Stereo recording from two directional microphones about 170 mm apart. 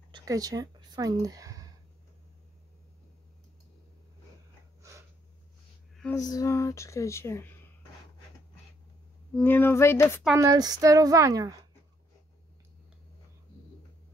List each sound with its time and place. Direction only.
0.1 s a sound: 20° right (ahead or behind)
6.1 s speech: 20° left (ahead or behind)
9.3 s speech: 10° left (ahead or behind)
10.3 s a woman's voice: 20° right (ahead or behind)